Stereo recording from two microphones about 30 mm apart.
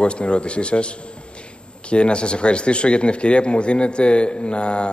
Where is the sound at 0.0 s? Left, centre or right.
Left.